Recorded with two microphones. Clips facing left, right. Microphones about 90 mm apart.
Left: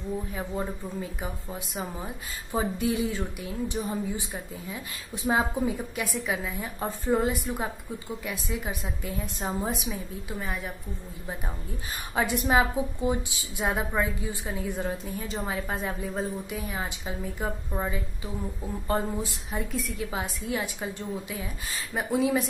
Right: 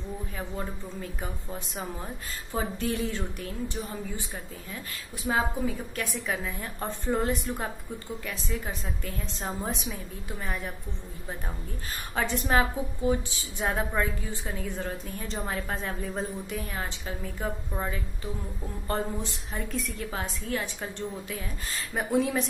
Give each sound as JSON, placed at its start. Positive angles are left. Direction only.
{"t": 0.3, "sound": "a woman's voice", "side_deg": 10}
{"t": 2.9, "sound": "a woman's voice", "side_deg": 5}
{"t": 3.2, "sound": "a woman's voice", "side_deg": 15}
{"t": 6.1, "sound": "a woman's voice", "side_deg": 5}
{"t": 12.2, "sound": "a woman's voice", "side_deg": 10}
{"t": 13.1, "sound": "a woman's voice", "side_deg": 20}
{"t": 13.6, "sound": "a woman's voice", "side_deg": 5}